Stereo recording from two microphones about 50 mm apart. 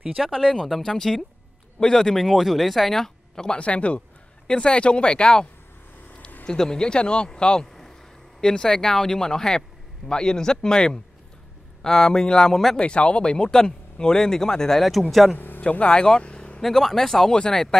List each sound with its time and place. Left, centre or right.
0.2 s speech: centre
3.4 s speech: left; by 12.8 s centre
12.8 s speech: left
14.8 s speech: centre
15.3 s speech: left
15.7 s speech: left
16.6 s speech: centre